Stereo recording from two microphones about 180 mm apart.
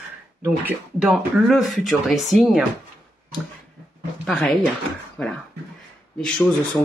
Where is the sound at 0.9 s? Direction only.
Centre (ahead or behind).